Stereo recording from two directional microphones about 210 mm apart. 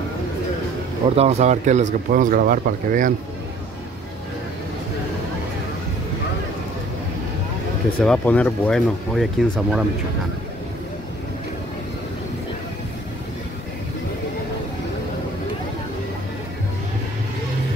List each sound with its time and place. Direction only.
1.1 s speech: 30° right (ahead or behind)
8.0 s speech: 5° left (ahead or behind)